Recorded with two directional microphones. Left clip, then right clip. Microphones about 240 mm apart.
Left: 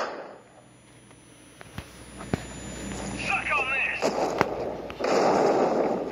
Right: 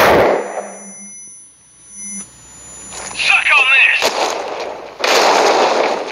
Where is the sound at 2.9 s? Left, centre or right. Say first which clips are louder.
Right 15 dB; right.